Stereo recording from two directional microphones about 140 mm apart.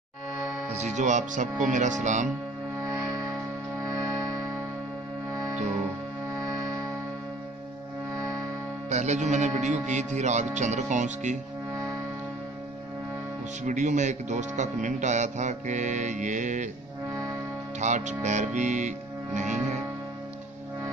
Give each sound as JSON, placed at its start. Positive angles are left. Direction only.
{"t": 0.7, "sound": "speech", "side_deg": -60}
{"t": 3.9, "sound": "music", "side_deg": -25}
{"t": 8.8, "sound": "speech", "side_deg": -55}
{"t": 13.7, "sound": "speech", "side_deg": -60}
{"t": 17.7, "sound": "speech", "side_deg": -55}